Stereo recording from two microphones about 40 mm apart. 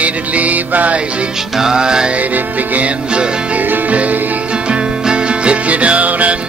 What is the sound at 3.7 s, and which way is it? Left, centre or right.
Music, right.